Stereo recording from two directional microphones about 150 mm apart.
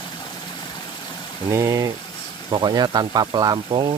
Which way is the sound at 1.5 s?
20° right (ahead or behind).